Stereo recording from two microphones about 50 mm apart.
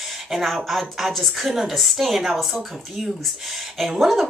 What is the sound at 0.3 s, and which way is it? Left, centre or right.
A woman's voice, centre.